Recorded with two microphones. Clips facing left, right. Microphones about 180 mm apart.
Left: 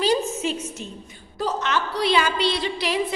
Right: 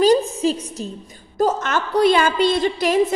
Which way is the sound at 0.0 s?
40° right (ahead or behind).